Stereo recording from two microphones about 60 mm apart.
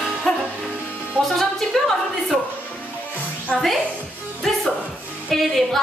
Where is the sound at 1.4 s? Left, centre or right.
Centre.